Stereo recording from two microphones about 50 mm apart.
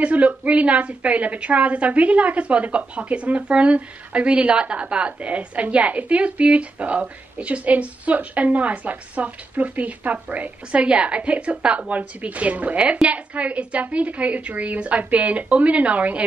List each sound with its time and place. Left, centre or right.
0.0 s a woman's voice: right